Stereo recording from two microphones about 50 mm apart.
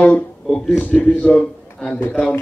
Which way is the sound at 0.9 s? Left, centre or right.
Left.